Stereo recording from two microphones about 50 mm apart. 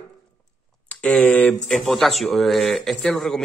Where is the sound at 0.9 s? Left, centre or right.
Left.